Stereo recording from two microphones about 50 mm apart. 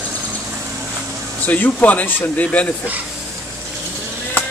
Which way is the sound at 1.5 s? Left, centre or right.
Left.